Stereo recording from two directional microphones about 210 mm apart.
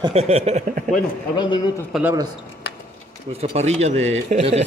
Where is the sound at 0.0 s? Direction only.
30° right (ahead or behind).